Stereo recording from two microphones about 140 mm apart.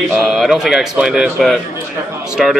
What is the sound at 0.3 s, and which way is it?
Speech, centre (ahead or behind).